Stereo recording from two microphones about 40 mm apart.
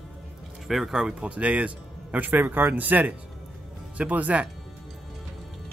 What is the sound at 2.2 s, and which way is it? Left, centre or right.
Speech, right.